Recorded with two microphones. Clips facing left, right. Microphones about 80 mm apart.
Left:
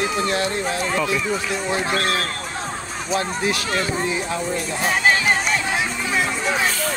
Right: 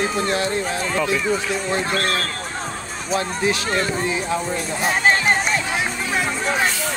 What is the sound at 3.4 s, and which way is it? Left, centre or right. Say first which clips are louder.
Speech: right 2 dB; right.